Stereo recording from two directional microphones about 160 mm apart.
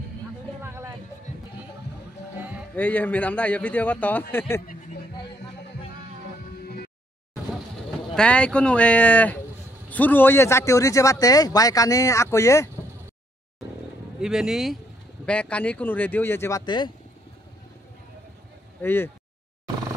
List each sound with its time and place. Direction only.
0.6 s a sound: 15° right (ahead or behind)
2.3 s music: 10° right (ahead or behind)
2.7 s a man's voice: 10° left (ahead or behind)
8.1 s a man's voice: 5° left (ahead or behind)
14.2 s a man's voice: 5° right (ahead or behind); by 16.9 s 30° left (ahead or behind)
18.8 s speech: 15° left (ahead or behind)